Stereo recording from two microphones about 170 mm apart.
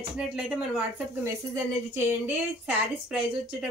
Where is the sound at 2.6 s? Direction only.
5° right (ahead or behind).